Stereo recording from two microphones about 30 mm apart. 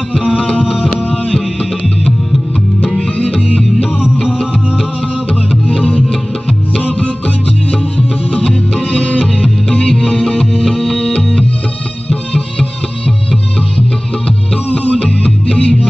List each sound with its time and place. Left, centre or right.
3.0 s music: left
8.9 s music: left
9.4 s music: left
12.1 s music: left
13.7 s music: left
15.0 s music: left